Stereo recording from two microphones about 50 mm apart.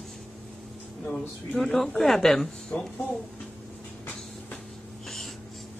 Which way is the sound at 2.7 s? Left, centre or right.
Left.